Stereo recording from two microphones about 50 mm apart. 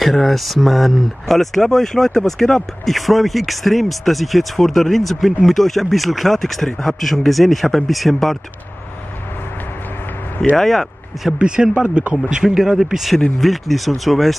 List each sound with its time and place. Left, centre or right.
0.0 s speech: centre
10.5 s speech: centre
11.3 s speech: centre
12.4 s speech: centre